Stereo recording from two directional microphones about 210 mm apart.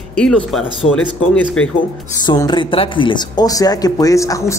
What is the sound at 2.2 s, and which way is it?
Speech, 20° left (ahead or behind).